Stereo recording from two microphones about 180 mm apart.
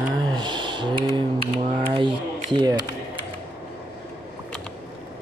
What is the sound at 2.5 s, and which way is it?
Speech, 25° right (ahead or behind).